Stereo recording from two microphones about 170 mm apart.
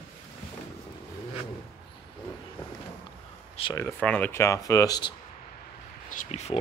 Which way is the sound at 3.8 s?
10° left (ahead or behind).